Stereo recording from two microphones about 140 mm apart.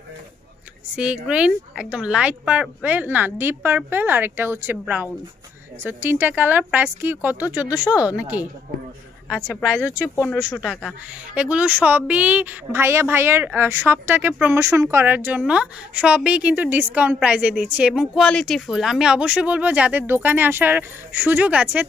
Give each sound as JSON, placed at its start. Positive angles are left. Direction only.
{"t": 0.9, "sound": "a woman's voice", "side_deg": -10}
{"t": 7.9, "sound": "a woman's voice", "side_deg": 25}
{"t": 8.2, "sound": "a woman's voice", "side_deg": -10}
{"t": 10.0, "sound": "speech", "side_deg": 15}
{"t": 10.5, "sound": "speech", "side_deg": 5}
{"t": 11.3, "sound": "a woman's voice", "side_deg": -10}
{"t": 18.2, "sound": "a woman's voice", "side_deg": 5}